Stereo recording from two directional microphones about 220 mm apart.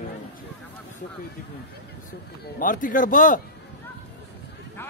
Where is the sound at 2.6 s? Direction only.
35° left (ahead or behind).